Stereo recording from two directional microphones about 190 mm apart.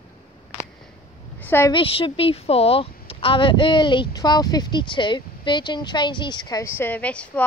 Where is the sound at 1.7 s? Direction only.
30° left (ahead or behind).